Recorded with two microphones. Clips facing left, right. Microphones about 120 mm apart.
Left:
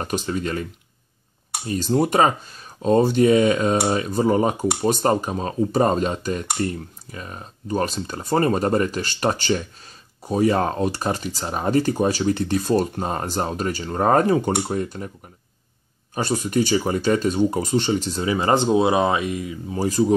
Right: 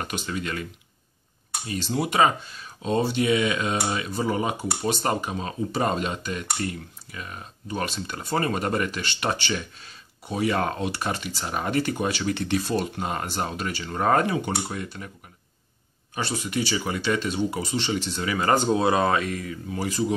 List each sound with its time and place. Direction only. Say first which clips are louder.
0.0 s speech: left 5 dB; 35° left (ahead or behind)
1.7 s speech: left 7 dB; 45° left (ahead or behind)
16.2 s speech: left 6 dB; 45° left (ahead or behind)
18.2 s speech: left 2 dB; 25° left (ahead or behind)
19.7 s speech: left 7 dB; 35° left (ahead or behind)